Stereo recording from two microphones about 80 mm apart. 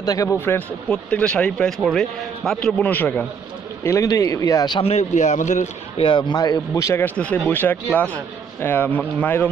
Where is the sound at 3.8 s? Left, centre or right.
Left.